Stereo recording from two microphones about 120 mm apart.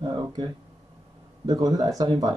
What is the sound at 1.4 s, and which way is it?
Speech, 35° right (ahead or behind).